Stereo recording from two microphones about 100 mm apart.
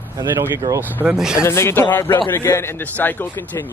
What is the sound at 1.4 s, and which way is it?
A man's voice, 25° left (ahead or behind).